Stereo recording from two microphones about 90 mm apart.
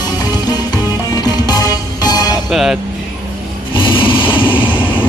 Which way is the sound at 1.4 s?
45° left (ahead or behind).